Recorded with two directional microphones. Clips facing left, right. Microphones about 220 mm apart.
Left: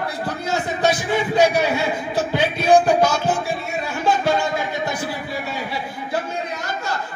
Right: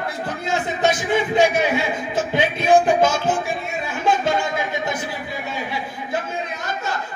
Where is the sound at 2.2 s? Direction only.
20° right (ahead or behind).